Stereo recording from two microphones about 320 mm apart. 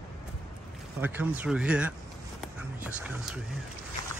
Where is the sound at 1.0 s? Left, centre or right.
Centre.